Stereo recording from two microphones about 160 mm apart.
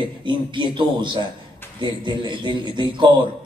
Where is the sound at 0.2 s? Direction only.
30° right (ahead or behind).